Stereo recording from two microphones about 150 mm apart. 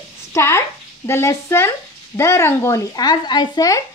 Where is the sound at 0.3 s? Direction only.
15° left (ahead or behind).